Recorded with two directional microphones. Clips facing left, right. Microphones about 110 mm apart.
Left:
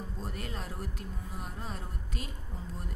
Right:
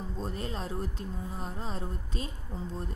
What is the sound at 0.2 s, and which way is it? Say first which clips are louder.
Speech: right 6 dB; 25° right (ahead or behind).